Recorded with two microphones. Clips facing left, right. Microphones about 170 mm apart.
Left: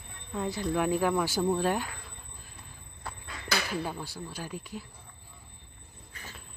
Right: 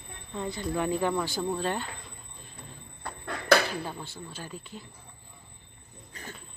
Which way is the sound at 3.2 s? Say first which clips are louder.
Right 11 dB; 60° right (ahead or behind).